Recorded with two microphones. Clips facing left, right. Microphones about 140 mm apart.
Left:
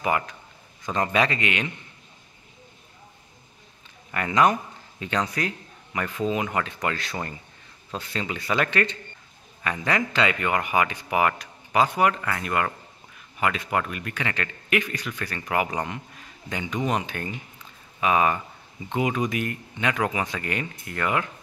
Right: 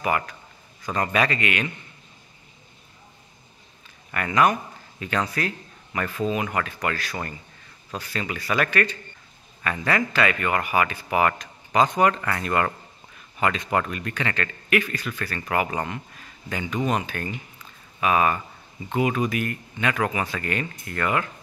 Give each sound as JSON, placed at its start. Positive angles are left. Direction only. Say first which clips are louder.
{"t": 0.0, "sound": "speech", "louder": "even", "side_deg": 20}
{"t": 4.1, "sound": "speech", "louder": "even", "side_deg": 20}